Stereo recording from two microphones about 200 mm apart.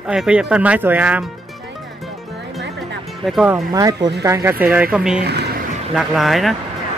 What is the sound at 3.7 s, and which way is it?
Speech, 15° right (ahead or behind).